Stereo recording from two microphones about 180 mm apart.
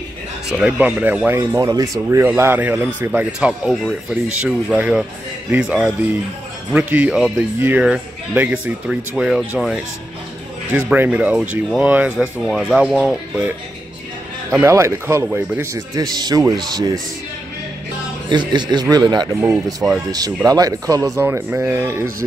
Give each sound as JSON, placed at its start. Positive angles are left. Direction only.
{"t": 0.6, "sound": "speech", "side_deg": -5}
{"t": 10.7, "sound": "speech", "side_deg": -10}
{"t": 14.6, "sound": "a man's voice", "side_deg": -15}
{"t": 18.3, "sound": "a man's voice", "side_deg": -25}
{"t": 19.4, "sound": "speech", "side_deg": -5}
{"t": 20.1, "sound": "a man's voice", "side_deg": -20}